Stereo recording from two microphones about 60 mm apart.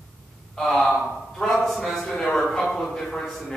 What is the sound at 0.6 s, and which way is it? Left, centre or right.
A man's voice, centre.